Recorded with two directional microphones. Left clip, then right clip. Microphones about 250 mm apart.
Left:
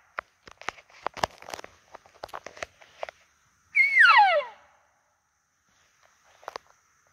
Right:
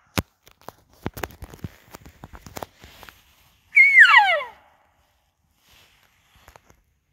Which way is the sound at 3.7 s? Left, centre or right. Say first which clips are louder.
Right 6 dB; left.